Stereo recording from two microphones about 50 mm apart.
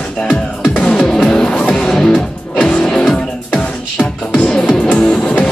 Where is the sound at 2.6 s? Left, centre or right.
Left.